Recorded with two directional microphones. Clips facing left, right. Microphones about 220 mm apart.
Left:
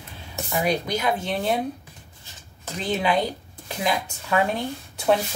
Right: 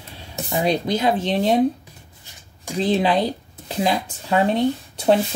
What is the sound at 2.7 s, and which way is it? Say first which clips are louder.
Speech: right 5 dB; 35° right (ahead or behind).